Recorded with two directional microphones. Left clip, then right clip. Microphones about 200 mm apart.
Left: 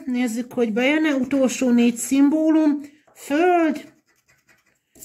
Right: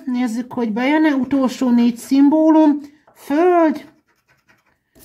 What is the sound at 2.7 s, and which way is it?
Speech, 45° right (ahead or behind).